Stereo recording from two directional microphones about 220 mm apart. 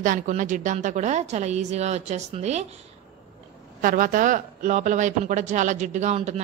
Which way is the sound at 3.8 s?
40° right (ahead or behind).